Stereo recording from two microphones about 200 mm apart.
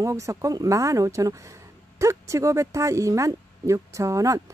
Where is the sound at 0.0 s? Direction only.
15° right (ahead or behind).